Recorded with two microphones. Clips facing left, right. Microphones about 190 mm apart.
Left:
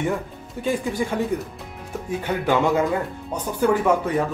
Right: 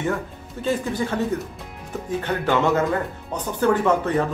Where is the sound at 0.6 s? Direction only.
10° left (ahead or behind).